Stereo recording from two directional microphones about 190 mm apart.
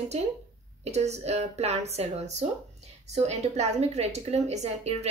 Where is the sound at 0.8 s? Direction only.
35° right (ahead or behind).